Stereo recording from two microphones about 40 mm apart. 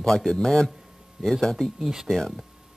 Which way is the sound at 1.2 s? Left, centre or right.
Centre.